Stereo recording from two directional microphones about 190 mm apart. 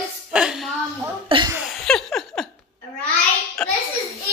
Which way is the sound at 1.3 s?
25° right (ahead or behind).